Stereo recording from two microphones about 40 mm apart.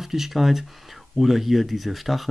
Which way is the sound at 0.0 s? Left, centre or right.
Centre.